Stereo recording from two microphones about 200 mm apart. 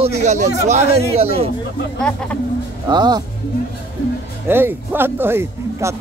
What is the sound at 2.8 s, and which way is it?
Speech, 20° right (ahead or behind).